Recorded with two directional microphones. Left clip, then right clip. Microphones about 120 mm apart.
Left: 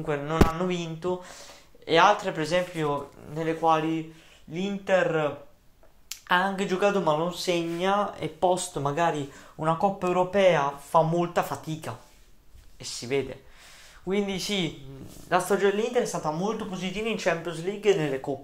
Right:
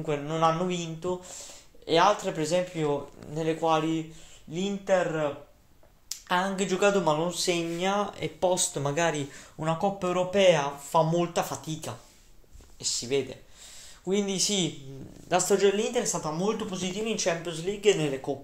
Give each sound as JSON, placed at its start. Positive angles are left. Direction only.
{"t": 0.3, "sound": "speech", "side_deg": 5}
{"t": 2.1, "sound": "speech", "side_deg": -10}
{"t": 3.3, "sound": "speech", "side_deg": -30}
{"t": 4.5, "sound": "speech", "side_deg": -10}
{"t": 4.8, "sound": "speech", "side_deg": 30}
{"t": 6.2, "sound": "speech", "side_deg": 5}
{"t": 6.9, "sound": "speech", "side_deg": -15}
{"t": 8.7, "sound": "speech", "side_deg": -25}
{"t": 9.8, "sound": "speech", "side_deg": 0}
{"t": 11.3, "sound": "speech", "side_deg": 5}
{"t": 14.3, "sound": "speech", "side_deg": -20}
{"t": 15.7, "sound": "speech", "side_deg": -10}